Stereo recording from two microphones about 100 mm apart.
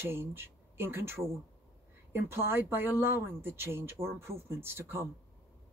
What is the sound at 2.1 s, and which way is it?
Speech, 25° right (ahead or behind).